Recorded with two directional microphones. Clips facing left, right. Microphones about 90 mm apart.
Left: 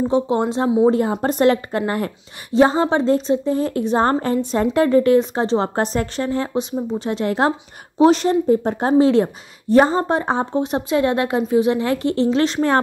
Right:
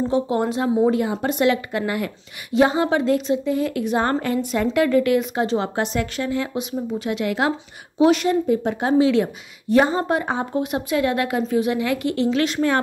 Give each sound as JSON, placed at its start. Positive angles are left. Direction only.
{"t": 0.0, "sound": "speech", "side_deg": 20}
{"t": 0.8, "sound": "a woman's voice", "side_deg": 35}